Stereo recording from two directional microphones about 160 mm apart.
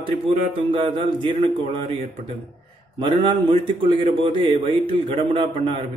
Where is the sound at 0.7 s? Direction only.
30° right (ahead or behind).